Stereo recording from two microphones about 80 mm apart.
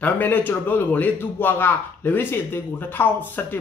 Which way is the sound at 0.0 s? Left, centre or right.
Left.